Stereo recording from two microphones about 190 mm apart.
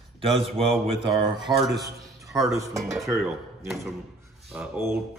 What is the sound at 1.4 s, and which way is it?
Speech, centre (ahead or behind).